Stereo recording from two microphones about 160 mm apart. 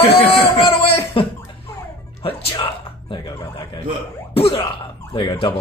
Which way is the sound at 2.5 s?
30° left (ahead or behind).